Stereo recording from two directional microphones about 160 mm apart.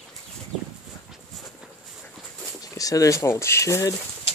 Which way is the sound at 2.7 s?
20° left (ahead or behind).